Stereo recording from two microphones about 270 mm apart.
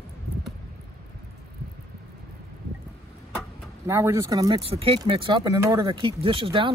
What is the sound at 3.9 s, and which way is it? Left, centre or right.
Speech, centre.